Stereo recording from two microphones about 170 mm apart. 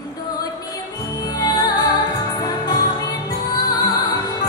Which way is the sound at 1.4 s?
25° left (ahead or behind).